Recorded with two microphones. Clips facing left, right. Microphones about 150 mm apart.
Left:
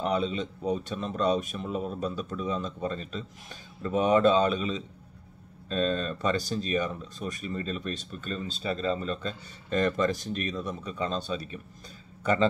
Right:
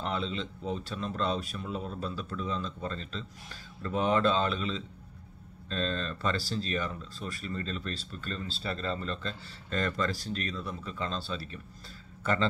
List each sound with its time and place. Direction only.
0.0 s a man's voice: 15° left (ahead or behind)